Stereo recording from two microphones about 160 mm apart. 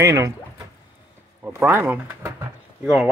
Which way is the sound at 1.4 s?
10° right (ahead or behind).